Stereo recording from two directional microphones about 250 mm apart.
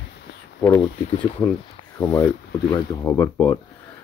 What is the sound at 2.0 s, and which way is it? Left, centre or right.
Speech, centre.